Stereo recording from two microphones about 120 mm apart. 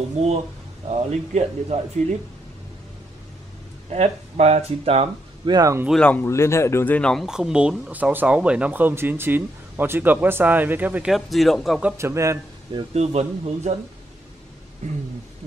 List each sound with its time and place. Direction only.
0.2 s speech: 65° right (ahead or behind)
3.9 s speech: 65° right (ahead or behind)
5.5 s a man's voice: 30° right (ahead or behind)
5.9 s speech: 10° left (ahead or behind)
6.2 s speech: 20° left (ahead or behind)
7.0 s speech: 5° left (ahead or behind)
7.2 s speech: 5° right (ahead or behind)
11.1 s speech: centre (ahead or behind)
12.0 s a man's voice: 25° right (ahead or behind)
12.9 s speech: 60° right (ahead or behind)